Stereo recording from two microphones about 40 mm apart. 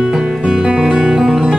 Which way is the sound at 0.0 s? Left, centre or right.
Centre.